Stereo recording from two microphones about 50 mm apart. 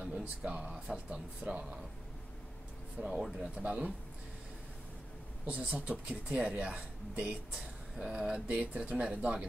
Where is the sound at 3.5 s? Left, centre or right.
Right.